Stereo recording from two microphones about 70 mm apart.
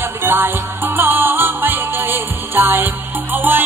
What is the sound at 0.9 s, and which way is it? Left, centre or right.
Music, right.